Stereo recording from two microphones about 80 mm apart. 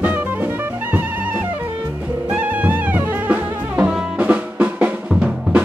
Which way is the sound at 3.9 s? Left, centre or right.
Centre.